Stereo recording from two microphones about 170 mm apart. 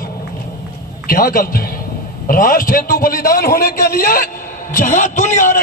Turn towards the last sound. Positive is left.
turn(degrees=50)  # may be behind; listen again after turning